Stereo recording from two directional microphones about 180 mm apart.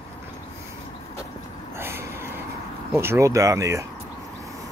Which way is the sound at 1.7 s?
15° right (ahead or behind).